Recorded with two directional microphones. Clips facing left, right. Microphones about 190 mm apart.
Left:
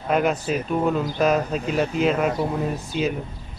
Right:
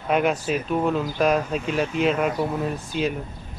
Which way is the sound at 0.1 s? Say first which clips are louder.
Even; centre (ahead or behind).